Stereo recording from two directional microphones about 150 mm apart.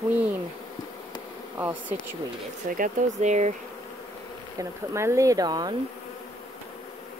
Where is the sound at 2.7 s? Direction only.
65° right (ahead or behind).